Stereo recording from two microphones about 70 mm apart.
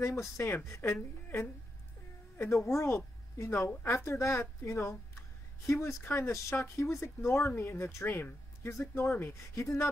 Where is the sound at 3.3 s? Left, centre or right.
Left.